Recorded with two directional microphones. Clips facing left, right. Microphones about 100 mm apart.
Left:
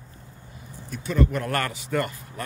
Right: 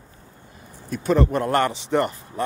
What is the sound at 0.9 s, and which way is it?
Speech, 45° right (ahead or behind).